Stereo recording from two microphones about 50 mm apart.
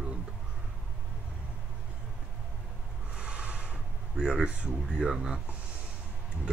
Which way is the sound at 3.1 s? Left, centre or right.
Right.